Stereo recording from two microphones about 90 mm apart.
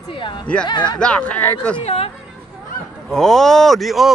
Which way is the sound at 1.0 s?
10° left (ahead or behind).